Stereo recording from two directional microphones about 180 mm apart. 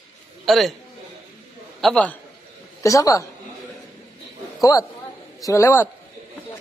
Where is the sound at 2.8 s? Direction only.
20° left (ahead or behind).